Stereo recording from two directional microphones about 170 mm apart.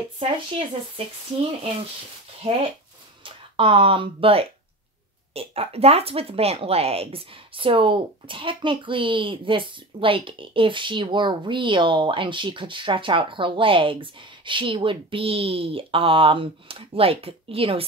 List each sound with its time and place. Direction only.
0.2 s speech: 30° right (ahead or behind)
3.3 s speech: 30° right (ahead or behind)